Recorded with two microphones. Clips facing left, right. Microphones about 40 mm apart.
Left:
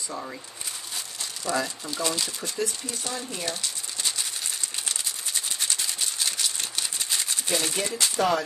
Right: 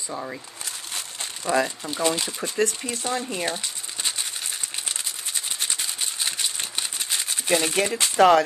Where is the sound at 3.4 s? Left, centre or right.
Right.